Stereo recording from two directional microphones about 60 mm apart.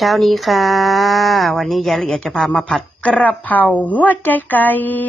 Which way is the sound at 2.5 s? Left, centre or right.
Left.